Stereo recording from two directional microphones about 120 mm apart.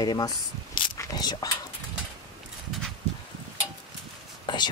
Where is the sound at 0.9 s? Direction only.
35° left (ahead or behind).